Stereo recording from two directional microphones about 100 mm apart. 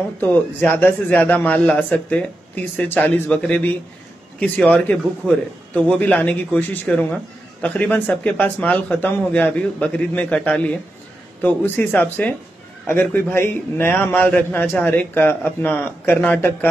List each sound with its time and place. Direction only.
0.2 s a man's voice: 20° left (ahead or behind)